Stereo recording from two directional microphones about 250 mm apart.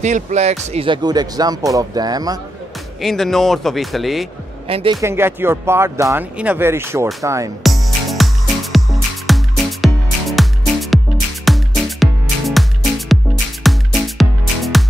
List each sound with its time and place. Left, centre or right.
0.0 s speech: right
3.0 s speech: centre
4.6 s speech: right
5.0 s speech: centre
7.6 s music: centre